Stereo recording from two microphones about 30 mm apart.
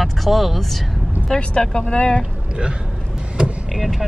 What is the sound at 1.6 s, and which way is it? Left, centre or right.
Speech, centre.